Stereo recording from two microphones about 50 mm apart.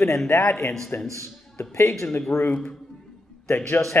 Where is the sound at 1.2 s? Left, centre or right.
Left.